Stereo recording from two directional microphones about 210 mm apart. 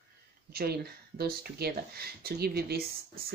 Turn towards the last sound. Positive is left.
turn(degrees=-45)  # may be behind; listen again after turning